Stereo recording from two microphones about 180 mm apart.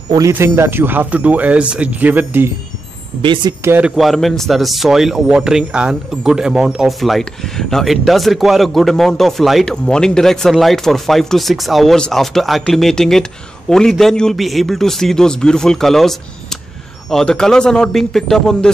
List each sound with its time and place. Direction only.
0.1 s speech: 15° right (ahead or behind)
3.2 s speech: 25° right (ahead or behind)
3.6 s speech: 10° right (ahead or behind)